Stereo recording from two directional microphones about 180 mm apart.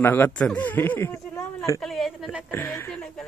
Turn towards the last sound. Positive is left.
turn(degrees=5)  # may be behind; listen again after turning